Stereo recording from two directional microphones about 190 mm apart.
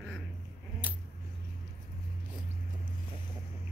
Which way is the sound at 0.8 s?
10° right (ahead or behind).